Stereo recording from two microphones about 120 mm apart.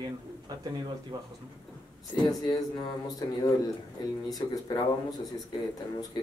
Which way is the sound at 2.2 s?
35° left (ahead or behind).